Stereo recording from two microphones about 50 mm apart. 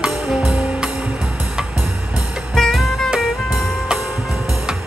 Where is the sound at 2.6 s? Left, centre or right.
Centre.